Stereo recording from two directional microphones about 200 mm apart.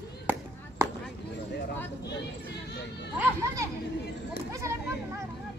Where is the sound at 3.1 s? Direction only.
15° right (ahead or behind).